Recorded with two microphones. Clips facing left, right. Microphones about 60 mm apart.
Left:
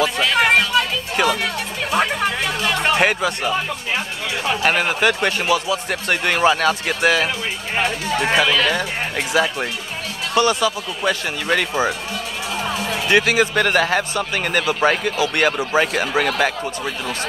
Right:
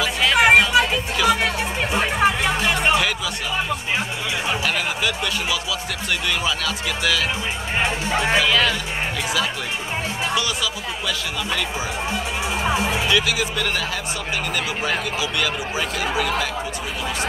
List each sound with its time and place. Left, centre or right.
0.2 s a sound: centre
1.3 s music: right
3.0 s a sound: left
4.6 s speech: left
7.8 s speech: right
10.3 s speech: left
12.6 s speech: centre
13.1 s speech: left